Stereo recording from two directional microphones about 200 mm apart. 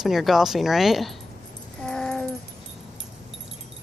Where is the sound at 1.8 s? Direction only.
5° left (ahead or behind).